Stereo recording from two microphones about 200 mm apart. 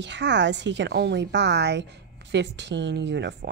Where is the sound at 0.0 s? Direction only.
60° right (ahead or behind).